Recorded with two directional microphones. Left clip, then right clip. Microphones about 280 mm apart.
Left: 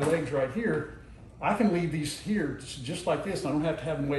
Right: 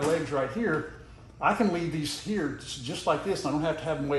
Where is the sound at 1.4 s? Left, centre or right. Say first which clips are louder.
Right 1 dB; centre.